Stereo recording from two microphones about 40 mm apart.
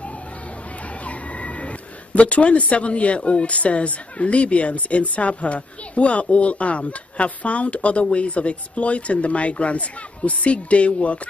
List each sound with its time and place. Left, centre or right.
0.8 s speech: left